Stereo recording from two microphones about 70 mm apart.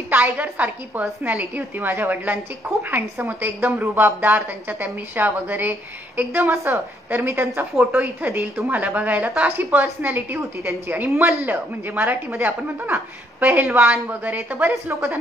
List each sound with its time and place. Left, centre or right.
0.1 s a woman's voice: right
7.9 s a woman's voice: right
12.9 s speech: right
13.7 s speech: centre
14.0 s speech: right